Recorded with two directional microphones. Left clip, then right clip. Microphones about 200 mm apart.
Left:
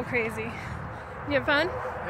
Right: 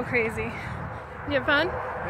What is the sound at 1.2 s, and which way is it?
Speech, 15° left (ahead or behind).